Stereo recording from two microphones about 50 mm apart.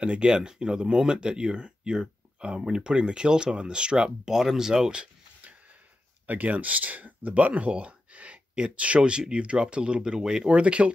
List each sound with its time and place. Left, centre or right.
0.0 s speech: right
4.3 s speech: centre
6.2 s speech: right